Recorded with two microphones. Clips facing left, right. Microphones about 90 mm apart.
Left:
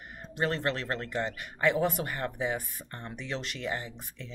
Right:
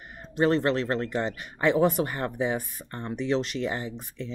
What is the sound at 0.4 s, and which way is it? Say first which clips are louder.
Speech: right 7 dB; 20° right (ahead or behind).